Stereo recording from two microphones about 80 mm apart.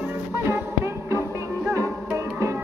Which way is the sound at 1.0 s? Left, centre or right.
Right.